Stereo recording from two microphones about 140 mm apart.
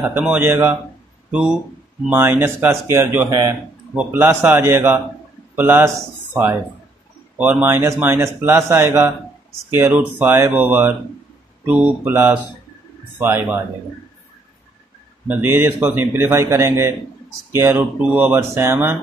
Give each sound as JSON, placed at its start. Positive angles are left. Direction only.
{"t": 0.1, "sound": "a man's voice", "side_deg": -10}
{"t": 1.3, "sound": "speech", "side_deg": -5}
{"t": 2.0, "sound": "a man's voice", "side_deg": -15}
{"t": 7.3, "sound": "a man's voice", "side_deg": -15}
{"t": 15.2, "sound": "a man's voice", "side_deg": -15}